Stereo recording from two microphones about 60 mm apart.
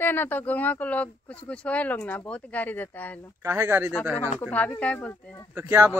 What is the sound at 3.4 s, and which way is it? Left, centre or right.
Speech, right.